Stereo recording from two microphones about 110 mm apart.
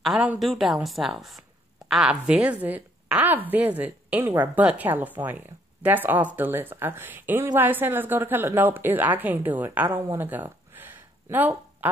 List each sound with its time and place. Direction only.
0.4 s a woman's voice: centre (ahead or behind); by 9.8 s 15° right (ahead or behind)
9.8 s speech: 30° right (ahead or behind)
10.2 s a sound: 15° right (ahead or behind)